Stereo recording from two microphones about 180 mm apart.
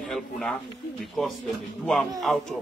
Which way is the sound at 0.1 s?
5° left (ahead or behind).